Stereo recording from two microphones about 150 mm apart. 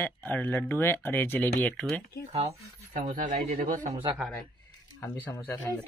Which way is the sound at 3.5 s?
60° right (ahead or behind).